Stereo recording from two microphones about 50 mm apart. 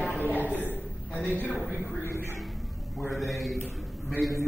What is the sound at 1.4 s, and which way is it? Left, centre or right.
Speech, left.